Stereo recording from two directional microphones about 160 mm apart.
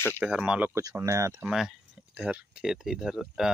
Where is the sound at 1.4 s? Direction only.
Centre (ahead or behind).